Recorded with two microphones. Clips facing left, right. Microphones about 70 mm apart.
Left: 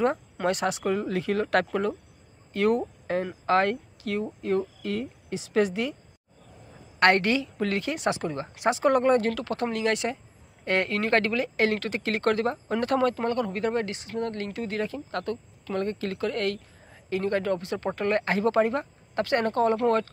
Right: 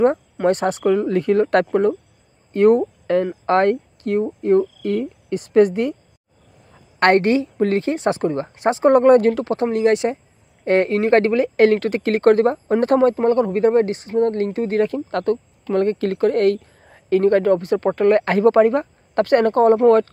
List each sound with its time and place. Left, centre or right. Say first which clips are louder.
0.0 s a sound: right 8 dB; right
0.5 s speech: right 9 dB; right
7.0 s speech: right 7 dB; right
9.0 s speech: right 10 dB; right
9.3 s speech: right 9 dB; right